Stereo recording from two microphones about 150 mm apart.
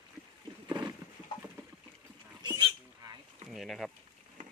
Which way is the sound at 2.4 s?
25° right (ahead or behind).